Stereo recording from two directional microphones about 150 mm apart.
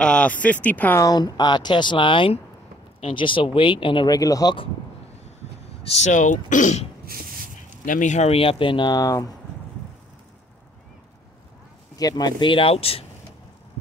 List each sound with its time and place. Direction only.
0.0 s speech: 5° left (ahead or behind)
1.0 s speech: 25° left (ahead or behind)
5.9 s speech: 55° left (ahead or behind); by 9.3 s 25° left (ahead or behind)
12.0 s speech: 25° left (ahead or behind)